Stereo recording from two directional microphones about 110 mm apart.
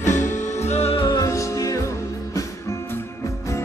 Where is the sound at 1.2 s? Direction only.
30° left (ahead or behind).